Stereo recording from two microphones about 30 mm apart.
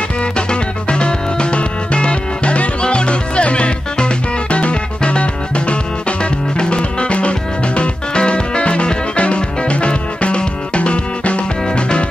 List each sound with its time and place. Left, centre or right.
0.2 s music: left